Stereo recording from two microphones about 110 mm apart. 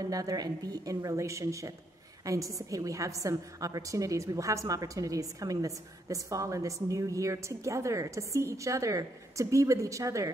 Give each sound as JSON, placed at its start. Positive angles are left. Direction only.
{"t": 0.0, "sound": "a woman's voice", "side_deg": -35}